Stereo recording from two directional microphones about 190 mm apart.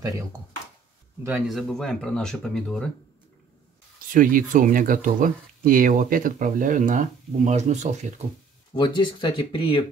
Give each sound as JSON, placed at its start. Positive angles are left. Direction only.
{"t": 1.2, "sound": "speech", "side_deg": -5}
{"t": 4.1, "sound": "speech", "side_deg": -45}
{"t": 8.7, "sound": "speech", "side_deg": 25}